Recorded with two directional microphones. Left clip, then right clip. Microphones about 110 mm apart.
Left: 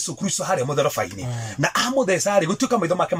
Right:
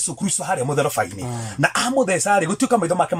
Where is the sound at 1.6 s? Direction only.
10° right (ahead or behind).